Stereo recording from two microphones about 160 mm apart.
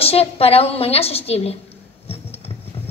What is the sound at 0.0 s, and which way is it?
A woman's voice, 40° left (ahead or behind).